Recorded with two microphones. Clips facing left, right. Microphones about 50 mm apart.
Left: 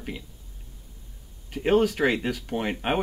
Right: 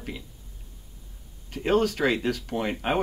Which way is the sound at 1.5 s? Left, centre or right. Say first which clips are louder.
Left 2 dB; centre.